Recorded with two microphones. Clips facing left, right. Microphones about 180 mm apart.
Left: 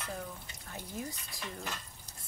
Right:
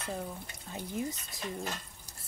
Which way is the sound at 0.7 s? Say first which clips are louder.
Right 5 dB; 20° right (ahead or behind).